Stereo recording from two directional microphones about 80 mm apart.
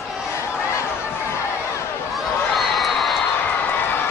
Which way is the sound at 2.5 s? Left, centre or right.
Centre.